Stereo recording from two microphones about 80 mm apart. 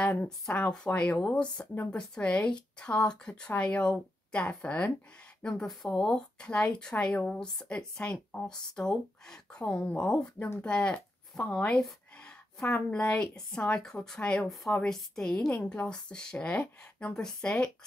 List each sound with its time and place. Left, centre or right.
0.0 s speech: centre
5.9 s a woman's voice: centre